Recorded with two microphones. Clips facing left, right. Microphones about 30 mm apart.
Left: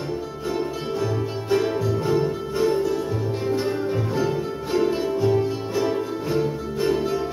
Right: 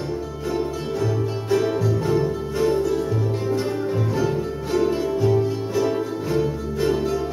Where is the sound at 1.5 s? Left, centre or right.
Centre.